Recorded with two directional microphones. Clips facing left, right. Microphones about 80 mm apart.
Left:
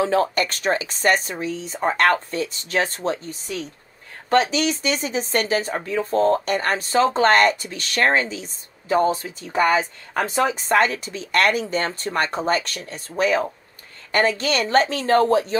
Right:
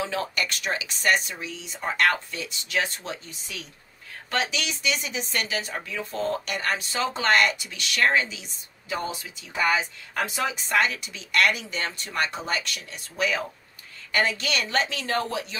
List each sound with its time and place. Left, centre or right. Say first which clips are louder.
0.0 s speech: left 9 dB; left
14.1 s speech: left 6 dB; left